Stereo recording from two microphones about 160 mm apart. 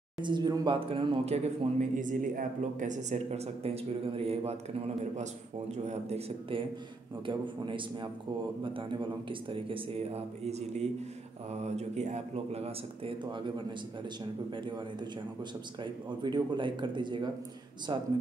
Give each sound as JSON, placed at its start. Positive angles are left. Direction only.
{"t": 0.2, "sound": "speech", "side_deg": -25}
{"t": 9.3, "sound": "speech", "side_deg": -35}
{"t": 14.5, "sound": "speech", "side_deg": -30}